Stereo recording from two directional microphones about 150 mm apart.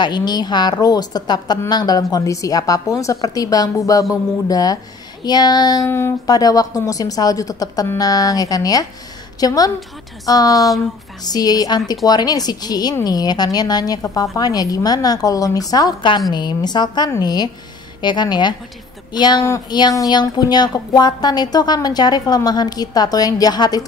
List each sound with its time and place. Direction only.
0.0 s speech: 30° left (ahead or behind)
5.9 s speech: 15° left (ahead or behind)